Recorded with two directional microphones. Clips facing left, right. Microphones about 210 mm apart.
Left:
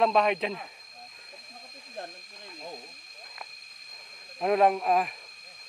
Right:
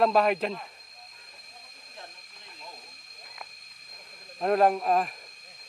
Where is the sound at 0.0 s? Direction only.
Centre (ahead or behind).